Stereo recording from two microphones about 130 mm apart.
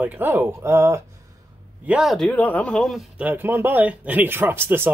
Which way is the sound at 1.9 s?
5° right (ahead or behind).